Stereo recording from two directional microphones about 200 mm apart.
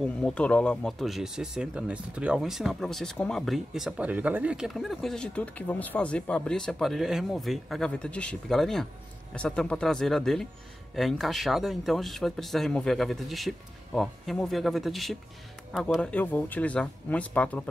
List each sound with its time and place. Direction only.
0.2 s speech: 5° left (ahead or behind)